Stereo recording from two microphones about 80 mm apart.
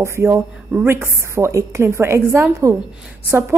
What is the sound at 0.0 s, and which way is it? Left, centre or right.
A woman's voice, right.